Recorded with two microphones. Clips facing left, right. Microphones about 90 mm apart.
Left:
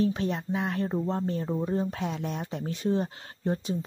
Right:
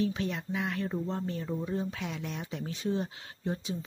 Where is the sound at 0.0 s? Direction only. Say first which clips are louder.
Left 4 dB; 35° left (ahead or behind).